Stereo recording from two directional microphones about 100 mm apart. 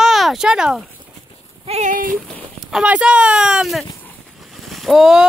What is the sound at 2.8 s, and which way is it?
Speech, 10° right (ahead or behind).